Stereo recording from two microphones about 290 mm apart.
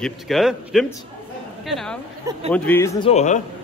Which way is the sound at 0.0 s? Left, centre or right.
Centre.